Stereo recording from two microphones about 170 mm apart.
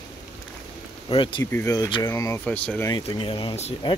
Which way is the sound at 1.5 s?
20° left (ahead or behind).